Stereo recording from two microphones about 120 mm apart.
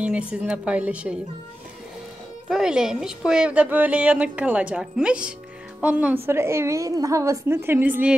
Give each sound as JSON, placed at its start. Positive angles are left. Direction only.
{"t": 0.0, "sound": "a woman's voice", "side_deg": -10}
{"t": 2.5, "sound": "a woman's voice", "side_deg": -5}